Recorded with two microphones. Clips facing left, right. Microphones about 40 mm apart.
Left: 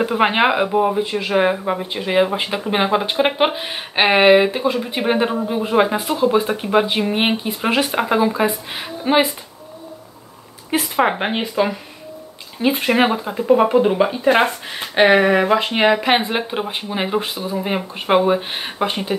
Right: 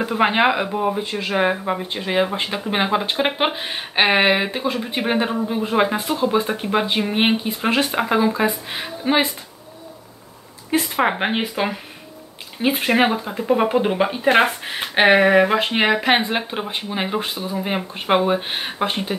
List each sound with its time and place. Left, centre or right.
0.0 s speech: centre
10.7 s speech: centre
12.6 s speech: centre
14.3 s speech: right
15.1 s speech: centre